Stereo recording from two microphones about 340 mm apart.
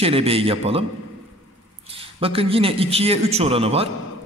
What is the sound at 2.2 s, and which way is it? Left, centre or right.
A man's voice, centre.